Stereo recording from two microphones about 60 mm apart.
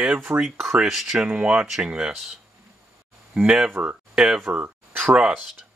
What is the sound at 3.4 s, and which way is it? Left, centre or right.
Speech, centre.